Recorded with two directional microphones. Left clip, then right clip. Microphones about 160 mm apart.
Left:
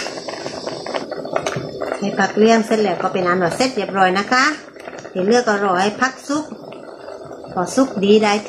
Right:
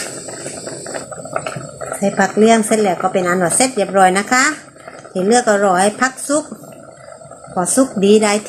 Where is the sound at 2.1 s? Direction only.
35° right (ahead or behind).